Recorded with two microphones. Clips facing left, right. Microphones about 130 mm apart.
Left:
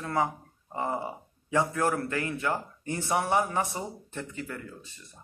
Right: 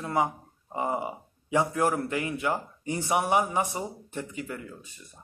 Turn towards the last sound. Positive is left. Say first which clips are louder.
# right 2 dB
turn(degrees=-15)  # may be behind; listen again after turning